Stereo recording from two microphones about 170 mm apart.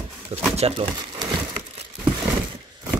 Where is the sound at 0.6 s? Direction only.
35° right (ahead or behind).